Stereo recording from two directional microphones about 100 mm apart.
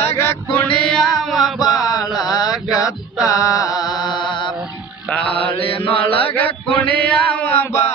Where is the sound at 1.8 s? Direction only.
40° left (ahead or behind).